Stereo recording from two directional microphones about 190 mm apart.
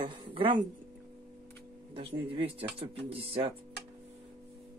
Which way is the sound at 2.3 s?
30° right (ahead or behind).